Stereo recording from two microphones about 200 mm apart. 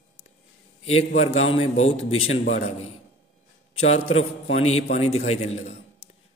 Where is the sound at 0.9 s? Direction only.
30° left (ahead or behind).